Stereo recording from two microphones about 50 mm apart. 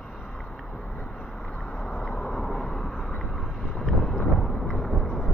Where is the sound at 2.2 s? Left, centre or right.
Centre.